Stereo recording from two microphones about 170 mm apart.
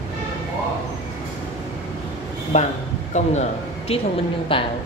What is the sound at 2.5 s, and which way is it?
Speech, 45° left (ahead or behind).